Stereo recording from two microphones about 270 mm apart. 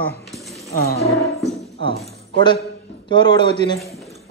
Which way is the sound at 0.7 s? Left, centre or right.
Left.